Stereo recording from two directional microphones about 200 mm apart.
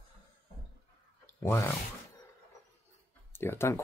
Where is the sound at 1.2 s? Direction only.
10° left (ahead or behind).